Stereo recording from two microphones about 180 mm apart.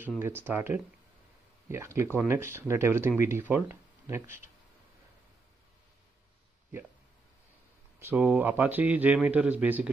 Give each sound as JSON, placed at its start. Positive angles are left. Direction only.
{"t": 0.2, "sound": "a man's voice", "side_deg": -10}
{"t": 8.0, "sound": "a man's voice", "side_deg": -10}